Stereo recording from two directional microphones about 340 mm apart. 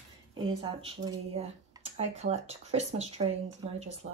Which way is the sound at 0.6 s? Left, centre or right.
Centre.